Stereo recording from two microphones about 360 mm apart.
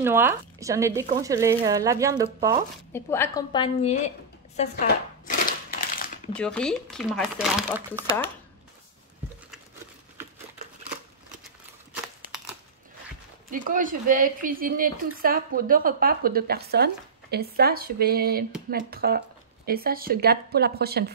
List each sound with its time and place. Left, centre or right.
0.0 s speech: centre
2.9 s a woman's voice: centre
4.6 s a sound: left
6.3 s speech: centre
13.5 s speech: right